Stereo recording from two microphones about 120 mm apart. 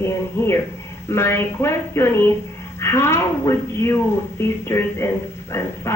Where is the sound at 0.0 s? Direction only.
20° left (ahead or behind).